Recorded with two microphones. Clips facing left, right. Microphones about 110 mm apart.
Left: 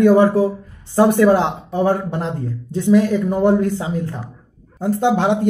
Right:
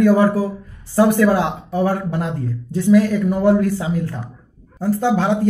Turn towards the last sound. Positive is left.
turn(degrees=20)  # may be behind; listen again after turning